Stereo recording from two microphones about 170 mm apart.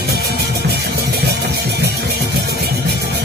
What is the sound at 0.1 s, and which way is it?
Music, 70° right (ahead or behind).